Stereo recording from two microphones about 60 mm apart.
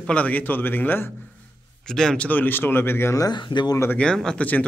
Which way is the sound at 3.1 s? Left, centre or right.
Left.